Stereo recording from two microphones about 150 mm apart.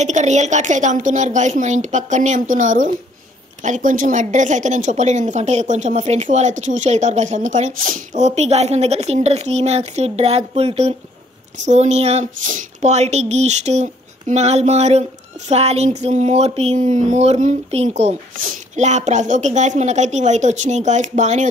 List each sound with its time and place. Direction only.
0.0 s a woman's voice: 50° right (ahead or behind)